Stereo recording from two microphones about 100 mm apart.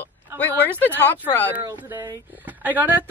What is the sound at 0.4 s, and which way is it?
Speech, 20° left (ahead or behind).